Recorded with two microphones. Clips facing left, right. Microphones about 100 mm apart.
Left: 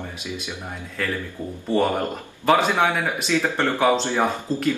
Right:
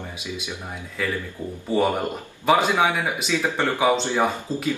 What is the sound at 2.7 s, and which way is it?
Speech, 10° right (ahead or behind).